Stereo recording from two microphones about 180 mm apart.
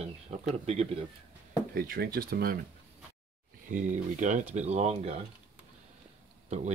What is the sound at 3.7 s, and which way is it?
Speech, 45° right (ahead or behind).